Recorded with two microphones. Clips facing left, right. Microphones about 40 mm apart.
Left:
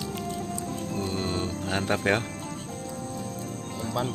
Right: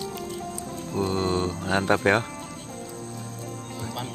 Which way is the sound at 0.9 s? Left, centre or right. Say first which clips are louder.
Right 7 dB; centre.